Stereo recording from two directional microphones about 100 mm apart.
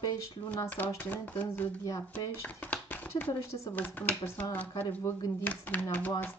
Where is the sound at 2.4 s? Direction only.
15° left (ahead or behind).